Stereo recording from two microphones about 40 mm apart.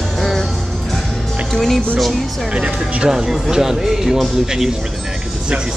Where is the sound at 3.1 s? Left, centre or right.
Centre.